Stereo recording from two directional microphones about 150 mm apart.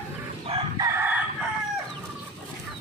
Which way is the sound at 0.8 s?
20° right (ahead or behind).